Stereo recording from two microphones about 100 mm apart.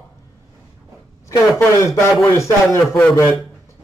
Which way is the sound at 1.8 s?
30° left (ahead or behind).